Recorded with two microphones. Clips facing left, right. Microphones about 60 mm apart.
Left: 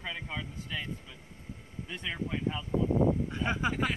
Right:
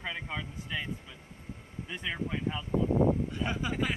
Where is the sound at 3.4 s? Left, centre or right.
Left.